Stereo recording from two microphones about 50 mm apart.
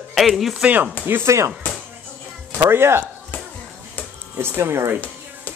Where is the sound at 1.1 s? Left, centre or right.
Right.